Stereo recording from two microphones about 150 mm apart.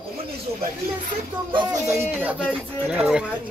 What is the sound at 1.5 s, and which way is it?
Speech, 35° right (ahead or behind).